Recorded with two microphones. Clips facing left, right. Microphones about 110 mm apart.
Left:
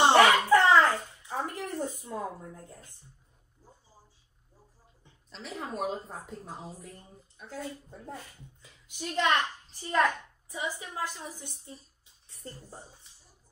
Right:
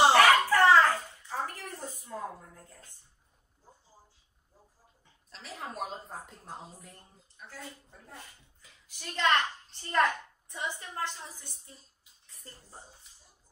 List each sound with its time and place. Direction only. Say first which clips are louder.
0.1 s a sound: left 2 dB; 20° left (ahead or behind)
2.0 s speech: left 3 dB; 25° left (ahead or behind)
5.3 s a woman's voice: left 4 dB; centre (ahead or behind)
7.4 s a woman's voice: left 7 dB; 20° left (ahead or behind)
9.7 s a child's voice: left 1 dB; 5° left (ahead or behind)
12.3 s a woman's voice: left 8 dB; 30° left (ahead or behind)